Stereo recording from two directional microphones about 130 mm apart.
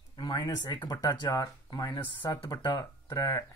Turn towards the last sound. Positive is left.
turn(degrees=25)  # may be behind; listen again after turning